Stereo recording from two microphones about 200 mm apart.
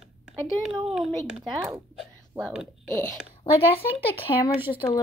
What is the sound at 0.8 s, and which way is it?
Speech, centre (ahead or behind).